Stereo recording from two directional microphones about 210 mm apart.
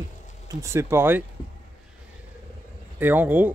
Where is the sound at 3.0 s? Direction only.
10° right (ahead or behind).